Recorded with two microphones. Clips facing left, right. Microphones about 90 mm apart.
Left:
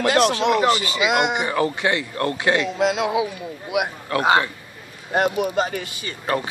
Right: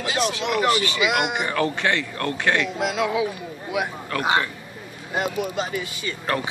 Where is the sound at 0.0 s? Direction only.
65° left (ahead or behind).